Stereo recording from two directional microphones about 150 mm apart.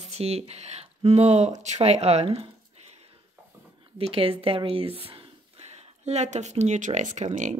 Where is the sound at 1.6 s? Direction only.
50° right (ahead or behind).